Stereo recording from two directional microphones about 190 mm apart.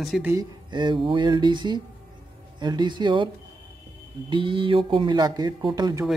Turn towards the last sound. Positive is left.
turn(degrees=-20)  # may be behind; listen again after turning